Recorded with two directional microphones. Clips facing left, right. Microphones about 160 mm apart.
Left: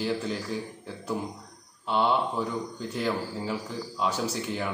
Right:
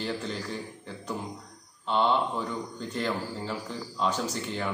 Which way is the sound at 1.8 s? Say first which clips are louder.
Even; 5° left (ahead or behind).